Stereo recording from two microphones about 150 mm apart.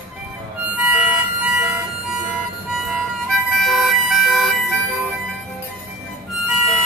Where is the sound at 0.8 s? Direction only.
5° right (ahead or behind).